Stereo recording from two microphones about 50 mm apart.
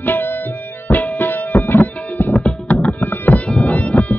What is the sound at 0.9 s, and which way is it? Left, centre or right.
Music, left.